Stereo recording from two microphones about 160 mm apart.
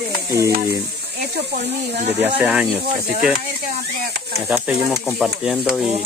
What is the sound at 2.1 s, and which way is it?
Speech, 10° right (ahead or behind).